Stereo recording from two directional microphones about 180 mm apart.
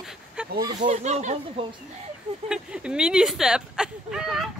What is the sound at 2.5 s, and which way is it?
Speech, 5° right (ahead or behind).